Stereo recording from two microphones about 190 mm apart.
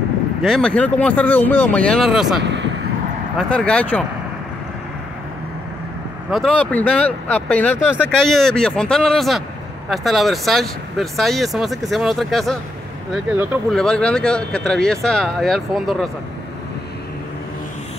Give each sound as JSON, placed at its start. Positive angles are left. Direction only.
{"t": 0.4, "sound": "speech", "side_deg": 5}
{"t": 2.4, "sound": "vehicle", "side_deg": -70}
{"t": 3.3, "sound": "speech", "side_deg": 5}
{"t": 6.3, "sound": "speech", "side_deg": 5}
{"t": 13.1, "sound": "speech", "side_deg": -10}
{"t": 13.7, "sound": "speech", "side_deg": 5}